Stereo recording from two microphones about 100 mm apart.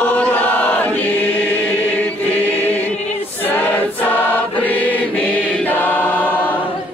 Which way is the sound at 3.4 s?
15° left (ahead or behind).